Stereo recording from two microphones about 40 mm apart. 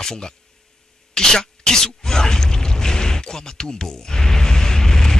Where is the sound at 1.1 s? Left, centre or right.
Centre.